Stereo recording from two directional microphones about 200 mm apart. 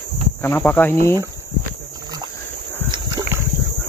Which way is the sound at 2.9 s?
20° right (ahead or behind).